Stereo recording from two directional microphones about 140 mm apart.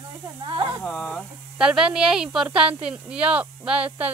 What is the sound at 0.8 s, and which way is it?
Speech, 5° left (ahead or behind).